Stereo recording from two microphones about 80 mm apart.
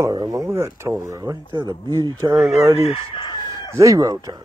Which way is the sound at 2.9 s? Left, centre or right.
Left.